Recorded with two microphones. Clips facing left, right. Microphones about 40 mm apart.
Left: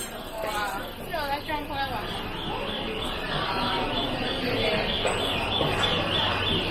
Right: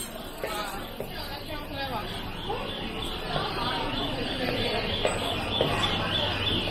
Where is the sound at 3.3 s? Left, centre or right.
Left.